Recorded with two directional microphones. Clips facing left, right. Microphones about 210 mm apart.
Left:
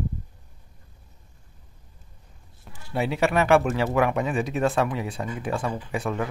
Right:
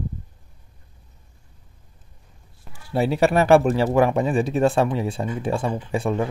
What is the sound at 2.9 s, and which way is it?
Speech, 35° right (ahead or behind).